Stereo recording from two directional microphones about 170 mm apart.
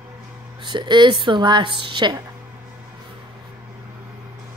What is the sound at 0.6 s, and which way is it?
A woman's voice, 25° right (ahead or behind).